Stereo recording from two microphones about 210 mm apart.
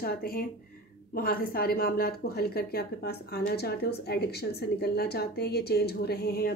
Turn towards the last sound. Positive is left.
turn(degrees=50)  # may be behind; listen again after turning